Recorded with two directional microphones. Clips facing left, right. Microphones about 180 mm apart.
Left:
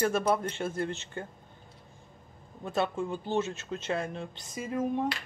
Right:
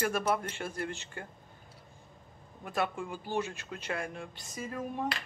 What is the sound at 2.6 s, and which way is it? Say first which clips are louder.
Speech: left 4 dB; 25° left (ahead or behind).